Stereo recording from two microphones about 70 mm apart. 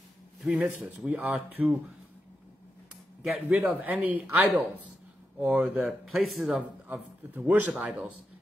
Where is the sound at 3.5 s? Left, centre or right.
Centre.